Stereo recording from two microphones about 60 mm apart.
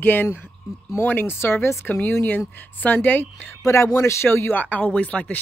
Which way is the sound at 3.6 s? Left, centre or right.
Left.